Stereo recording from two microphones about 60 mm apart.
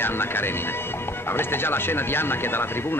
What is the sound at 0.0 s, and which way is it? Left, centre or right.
Speech, left.